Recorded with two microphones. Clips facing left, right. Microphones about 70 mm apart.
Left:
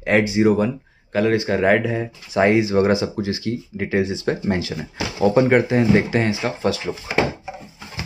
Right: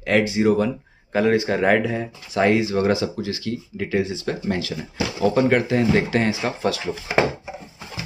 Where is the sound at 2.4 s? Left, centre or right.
Centre.